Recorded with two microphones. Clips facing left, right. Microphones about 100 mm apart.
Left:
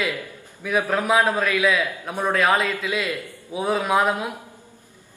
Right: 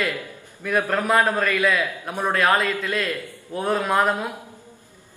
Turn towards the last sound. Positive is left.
turn(degrees=5)  # may be behind; listen again after turning